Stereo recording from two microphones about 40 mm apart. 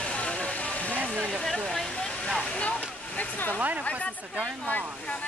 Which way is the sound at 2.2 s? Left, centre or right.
Centre.